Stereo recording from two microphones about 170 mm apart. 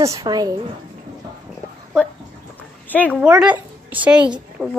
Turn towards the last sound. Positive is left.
turn(degrees=-5)  # may be behind; listen again after turning